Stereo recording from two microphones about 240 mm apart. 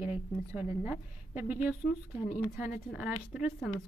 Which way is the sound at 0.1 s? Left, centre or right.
Centre.